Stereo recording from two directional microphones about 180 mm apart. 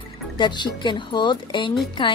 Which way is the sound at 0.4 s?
25° left (ahead or behind).